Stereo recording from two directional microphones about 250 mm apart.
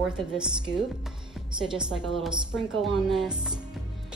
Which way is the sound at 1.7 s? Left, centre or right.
Centre.